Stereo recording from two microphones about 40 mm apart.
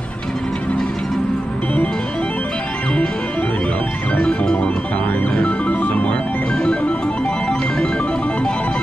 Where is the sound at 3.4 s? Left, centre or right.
Left.